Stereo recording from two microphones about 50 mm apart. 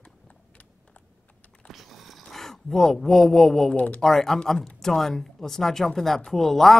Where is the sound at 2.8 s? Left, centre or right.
Centre.